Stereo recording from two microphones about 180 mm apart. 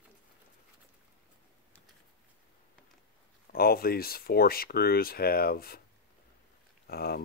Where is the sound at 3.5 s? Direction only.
55° left (ahead or behind).